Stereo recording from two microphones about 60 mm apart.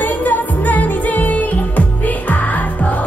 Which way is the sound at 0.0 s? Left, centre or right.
Left.